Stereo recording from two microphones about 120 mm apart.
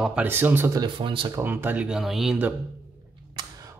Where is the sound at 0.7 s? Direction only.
40° right (ahead or behind).